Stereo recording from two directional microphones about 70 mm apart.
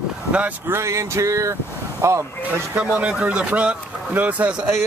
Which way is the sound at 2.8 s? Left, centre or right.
Centre.